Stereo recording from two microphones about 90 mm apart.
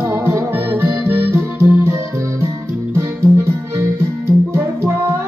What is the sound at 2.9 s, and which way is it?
Music, 30° right (ahead or behind).